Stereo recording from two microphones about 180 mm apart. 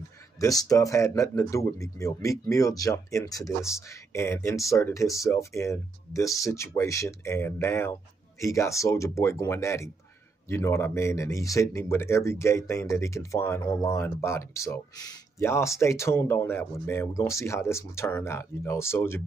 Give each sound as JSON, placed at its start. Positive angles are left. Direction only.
{"t": 0.4, "sound": "speech", "side_deg": 20}